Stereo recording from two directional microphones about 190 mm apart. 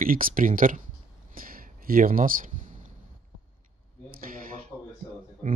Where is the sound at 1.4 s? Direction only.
50° right (ahead or behind).